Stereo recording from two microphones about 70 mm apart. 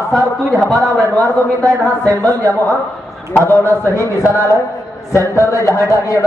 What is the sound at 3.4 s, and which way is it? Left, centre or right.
A man's voice, left.